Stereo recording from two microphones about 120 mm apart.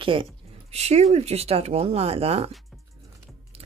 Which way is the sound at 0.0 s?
45° right (ahead or behind).